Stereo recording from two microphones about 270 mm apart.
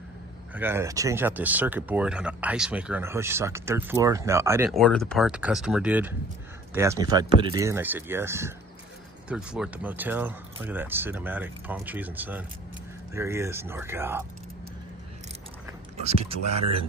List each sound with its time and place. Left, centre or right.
0.6 s speech: centre
16.0 s speech: right